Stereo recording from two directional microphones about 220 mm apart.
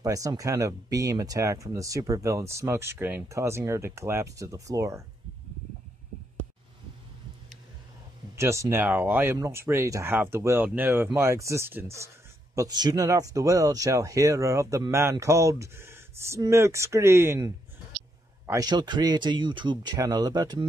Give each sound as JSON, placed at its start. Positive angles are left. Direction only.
{"t": 0.0, "sound": "speech", "side_deg": -15}
{"t": 8.4, "sound": "speech", "side_deg": -10}
{"t": 18.5, "sound": "speech", "side_deg": -15}